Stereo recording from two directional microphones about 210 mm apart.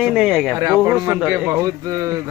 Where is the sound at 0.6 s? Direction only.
15° right (ahead or behind).